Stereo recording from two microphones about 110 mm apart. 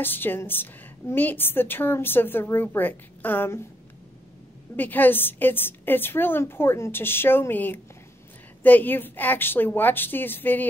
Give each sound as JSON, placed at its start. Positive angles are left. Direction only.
{"t": 0.0, "sound": "a woman's voice", "side_deg": 20}
{"t": 4.7, "sound": "a woman's voice", "side_deg": 15}